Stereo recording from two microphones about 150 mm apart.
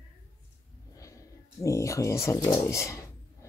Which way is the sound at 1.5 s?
20° left (ahead or behind).